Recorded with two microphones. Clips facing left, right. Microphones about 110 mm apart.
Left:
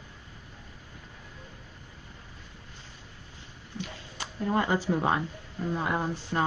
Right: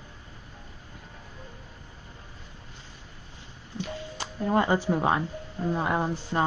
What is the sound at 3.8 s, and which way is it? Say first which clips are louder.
Music: right 6 dB; 25° right (ahead or behind).